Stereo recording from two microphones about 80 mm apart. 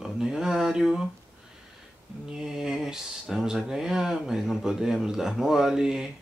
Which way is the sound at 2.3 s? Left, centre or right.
Centre.